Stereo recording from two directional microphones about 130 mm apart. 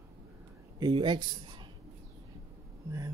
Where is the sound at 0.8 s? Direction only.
40° right (ahead or behind).